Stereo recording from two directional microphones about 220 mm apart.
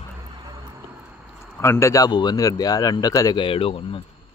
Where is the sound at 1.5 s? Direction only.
10° left (ahead or behind).